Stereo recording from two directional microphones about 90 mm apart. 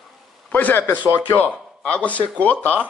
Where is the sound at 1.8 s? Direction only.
15° left (ahead or behind).